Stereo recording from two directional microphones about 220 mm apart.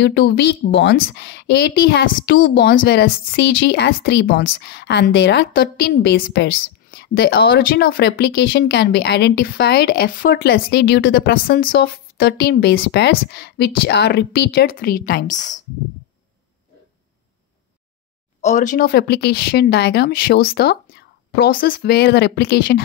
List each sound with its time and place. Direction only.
0.0 s a woman's voice: 50° left (ahead or behind)
18.4 s a woman's voice: 35° left (ahead or behind)